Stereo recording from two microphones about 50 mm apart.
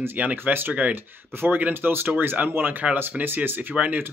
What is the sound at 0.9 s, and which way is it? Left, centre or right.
Speech, right.